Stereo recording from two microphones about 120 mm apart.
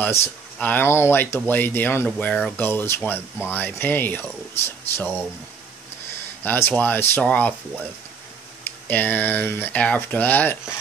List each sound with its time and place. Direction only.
0.0 s speech: 20° left (ahead or behind)
2.0 s speech: 10° left (ahead or behind)
2.6 s speech: 20° left (ahead or behind)
6.4 s speech: 15° left (ahead or behind)
8.6 s speech: 15° left (ahead or behind)